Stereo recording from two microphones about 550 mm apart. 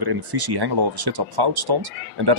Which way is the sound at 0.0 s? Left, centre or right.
Right.